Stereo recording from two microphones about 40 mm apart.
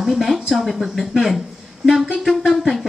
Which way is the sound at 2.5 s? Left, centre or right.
Centre.